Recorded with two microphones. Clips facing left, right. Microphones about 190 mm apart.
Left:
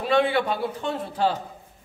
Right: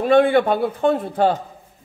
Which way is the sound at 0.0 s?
50° right (ahead or behind).